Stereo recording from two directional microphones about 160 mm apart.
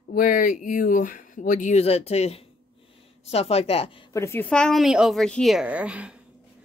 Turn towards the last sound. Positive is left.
turn(degrees=-5)  # may be behind; listen again after turning